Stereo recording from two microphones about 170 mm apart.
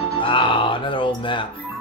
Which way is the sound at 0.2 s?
30° left (ahead or behind).